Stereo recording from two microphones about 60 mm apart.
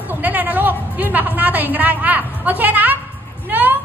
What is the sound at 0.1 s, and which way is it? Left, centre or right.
A woman's voice, right.